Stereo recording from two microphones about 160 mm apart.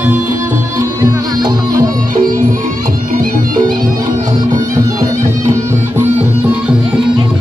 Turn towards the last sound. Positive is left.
turn(degrees=-5)  # may be behind; listen again after turning